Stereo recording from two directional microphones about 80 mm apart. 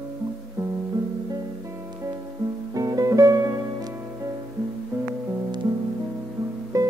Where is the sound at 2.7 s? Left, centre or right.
Right.